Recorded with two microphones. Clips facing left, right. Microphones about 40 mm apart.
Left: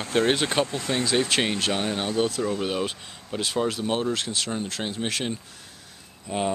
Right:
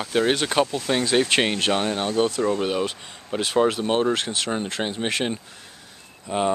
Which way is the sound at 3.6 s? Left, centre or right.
Right.